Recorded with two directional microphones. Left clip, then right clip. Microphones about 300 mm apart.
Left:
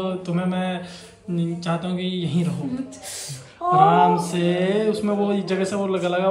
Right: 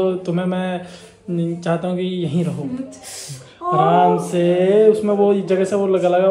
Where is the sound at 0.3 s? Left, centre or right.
Centre.